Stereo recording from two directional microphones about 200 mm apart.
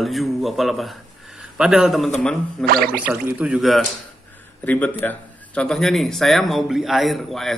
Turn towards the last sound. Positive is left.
turn(degrees=0)  # may be behind; listen again after turning